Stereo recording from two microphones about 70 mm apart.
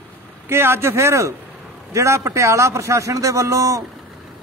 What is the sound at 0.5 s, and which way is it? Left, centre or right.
A man's voice, right.